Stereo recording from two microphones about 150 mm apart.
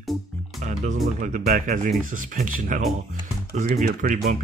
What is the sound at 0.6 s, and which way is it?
Speech, 55° right (ahead or behind).